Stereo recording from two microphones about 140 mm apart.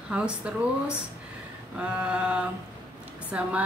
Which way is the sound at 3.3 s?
10° right (ahead or behind).